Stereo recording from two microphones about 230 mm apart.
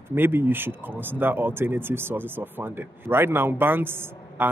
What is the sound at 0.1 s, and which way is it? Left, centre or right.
A man's voice, centre.